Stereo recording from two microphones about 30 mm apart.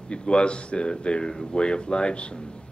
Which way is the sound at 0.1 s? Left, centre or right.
Left.